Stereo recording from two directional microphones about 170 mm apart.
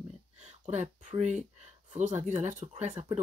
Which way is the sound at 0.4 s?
40° right (ahead or behind).